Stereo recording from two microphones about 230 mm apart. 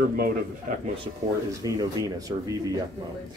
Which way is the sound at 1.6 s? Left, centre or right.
Centre.